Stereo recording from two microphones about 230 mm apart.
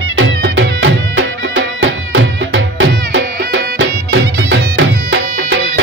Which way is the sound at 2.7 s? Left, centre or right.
Right.